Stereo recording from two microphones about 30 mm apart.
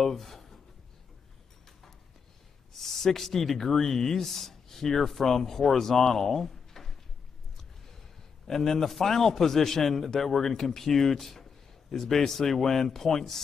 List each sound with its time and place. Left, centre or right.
0.0 s speech: centre
2.8 s speech: centre
8.5 s a man's voice: centre